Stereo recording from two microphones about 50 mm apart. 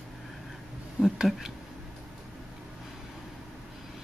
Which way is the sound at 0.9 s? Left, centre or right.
Centre.